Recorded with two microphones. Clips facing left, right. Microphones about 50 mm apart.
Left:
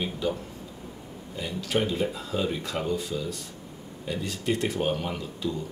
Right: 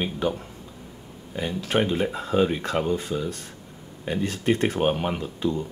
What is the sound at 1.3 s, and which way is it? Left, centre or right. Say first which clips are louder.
Speech: right 4 dB; right.